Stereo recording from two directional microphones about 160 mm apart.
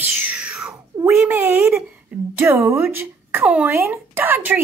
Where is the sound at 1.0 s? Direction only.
15° right (ahead or behind).